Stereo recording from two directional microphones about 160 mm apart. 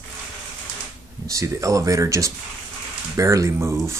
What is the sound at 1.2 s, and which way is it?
Speech, 20° right (ahead or behind).